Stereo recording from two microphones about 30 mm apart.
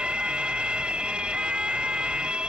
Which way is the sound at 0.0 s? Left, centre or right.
Right.